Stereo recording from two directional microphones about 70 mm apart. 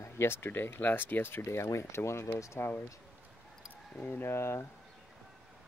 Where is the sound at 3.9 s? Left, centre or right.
Left.